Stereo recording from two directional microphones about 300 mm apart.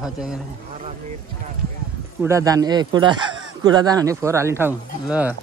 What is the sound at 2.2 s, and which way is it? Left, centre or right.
Speech, centre.